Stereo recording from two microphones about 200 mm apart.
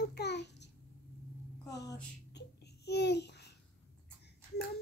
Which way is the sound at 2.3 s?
55° left (ahead or behind).